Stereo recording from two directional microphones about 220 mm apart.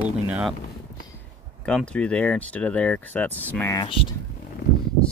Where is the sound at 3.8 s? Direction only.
25° left (ahead or behind).